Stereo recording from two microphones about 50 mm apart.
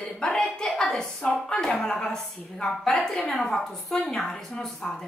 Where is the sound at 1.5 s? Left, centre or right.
Centre.